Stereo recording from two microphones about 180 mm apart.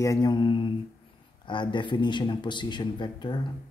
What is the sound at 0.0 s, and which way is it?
Speech, 20° left (ahead or behind).